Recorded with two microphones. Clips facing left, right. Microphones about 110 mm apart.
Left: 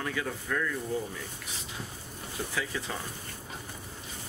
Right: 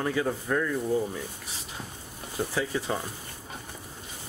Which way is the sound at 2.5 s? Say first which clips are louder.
Right 5 dB; 30° right (ahead or behind).